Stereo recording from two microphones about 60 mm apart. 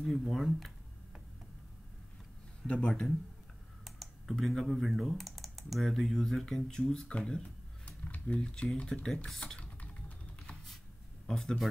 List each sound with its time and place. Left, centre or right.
0.0 s speech: centre
2.6 s speech: centre
3.8 s computer keyboard: centre
4.6 s speech: centre
7.8 s typing: left
8.7 s speech: centre
9.4 s typing: centre
11.2 s speech: centre